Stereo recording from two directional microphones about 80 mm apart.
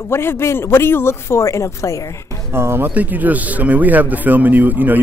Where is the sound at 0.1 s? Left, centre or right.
Left.